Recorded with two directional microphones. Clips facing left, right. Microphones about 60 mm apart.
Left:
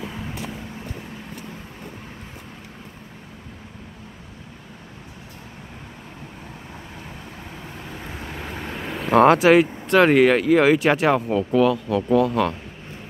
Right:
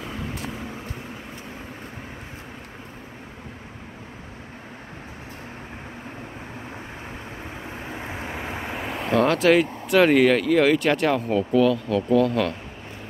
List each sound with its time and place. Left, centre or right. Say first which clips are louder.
7.7 s vehicle: right 3 dB; right
8.7 s vehicle: left 2 dB; centre
9.1 s speech: left 6 dB; left
9.4 s speech: left 3 dB; centre